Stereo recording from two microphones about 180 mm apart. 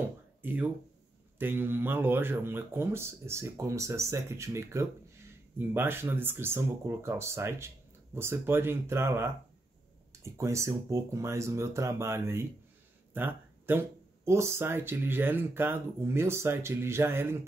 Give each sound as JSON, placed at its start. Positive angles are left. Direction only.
{"t": 0.4, "sound": "speech", "side_deg": -10}